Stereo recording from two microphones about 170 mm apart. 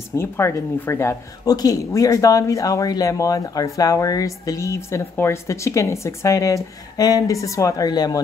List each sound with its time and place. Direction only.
0.1 s speech: 15° left (ahead or behind)